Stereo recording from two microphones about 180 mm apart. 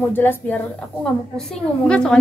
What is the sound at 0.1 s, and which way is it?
A woman's voice, 10° left (ahead or behind).